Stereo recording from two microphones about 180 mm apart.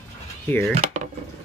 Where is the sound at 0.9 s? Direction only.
45° right (ahead or behind).